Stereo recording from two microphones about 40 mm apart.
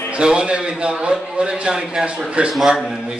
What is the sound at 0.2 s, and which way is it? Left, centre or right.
Speech, right.